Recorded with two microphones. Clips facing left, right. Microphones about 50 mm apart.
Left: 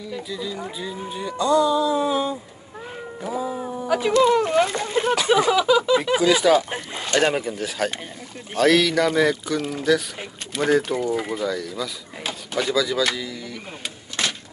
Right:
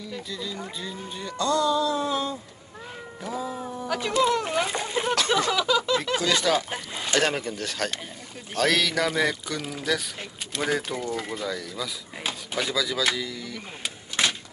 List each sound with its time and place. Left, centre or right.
0.1 s speech: centre
3.2 s a sound: centre
4.2 s speech: centre
4.5 s speech: centre
11.4 s speech: centre
14.2 s a sound: centre